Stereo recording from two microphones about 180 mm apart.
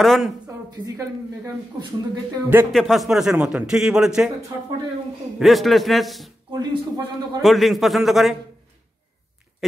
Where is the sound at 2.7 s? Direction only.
Centre (ahead or behind).